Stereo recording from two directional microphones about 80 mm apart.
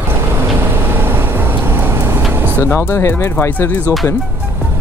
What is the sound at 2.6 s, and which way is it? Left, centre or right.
Speech, left.